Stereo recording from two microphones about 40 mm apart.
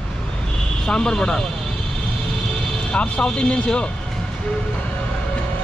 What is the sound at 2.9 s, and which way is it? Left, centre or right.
Speech, left.